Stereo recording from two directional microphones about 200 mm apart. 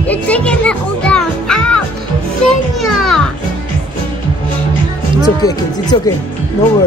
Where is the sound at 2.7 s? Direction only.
Centre (ahead or behind).